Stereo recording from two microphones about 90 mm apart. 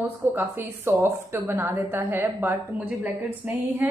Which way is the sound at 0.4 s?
25° right (ahead or behind).